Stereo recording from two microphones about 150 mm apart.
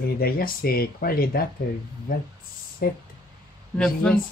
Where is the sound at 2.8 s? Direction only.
90° left.